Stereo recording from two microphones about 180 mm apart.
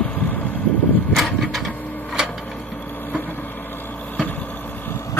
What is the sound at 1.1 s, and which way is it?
Vehicle, centre (ahead or behind).